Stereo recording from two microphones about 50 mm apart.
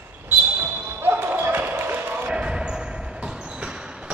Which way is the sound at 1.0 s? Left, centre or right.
Right.